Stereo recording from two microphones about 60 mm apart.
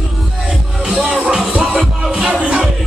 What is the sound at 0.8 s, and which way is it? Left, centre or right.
Music, centre.